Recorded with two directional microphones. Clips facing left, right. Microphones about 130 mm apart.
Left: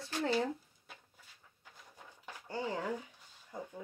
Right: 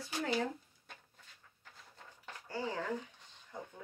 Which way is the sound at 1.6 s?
10° left (ahead or behind).